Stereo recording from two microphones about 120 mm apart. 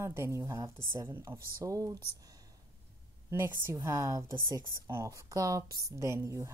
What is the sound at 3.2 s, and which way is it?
Speech, 20° right (ahead or behind).